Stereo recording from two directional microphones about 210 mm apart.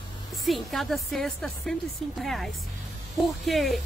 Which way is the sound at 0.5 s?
Centre (ahead or behind).